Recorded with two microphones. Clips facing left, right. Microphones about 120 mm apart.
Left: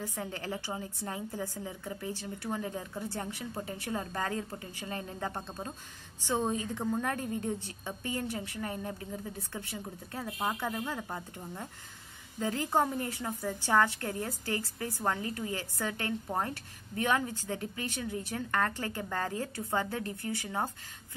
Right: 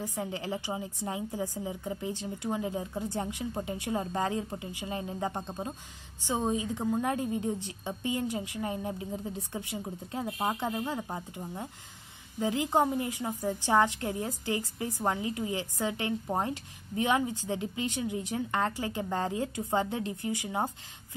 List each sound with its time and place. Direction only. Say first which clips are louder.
0.0 s a woman's voice: right 3 dB; 15° right (ahead or behind)